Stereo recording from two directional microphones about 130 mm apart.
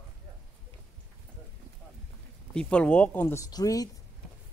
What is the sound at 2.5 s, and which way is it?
Speech, 10° left (ahead or behind).